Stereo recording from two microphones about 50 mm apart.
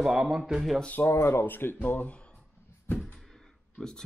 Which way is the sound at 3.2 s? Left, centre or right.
Centre.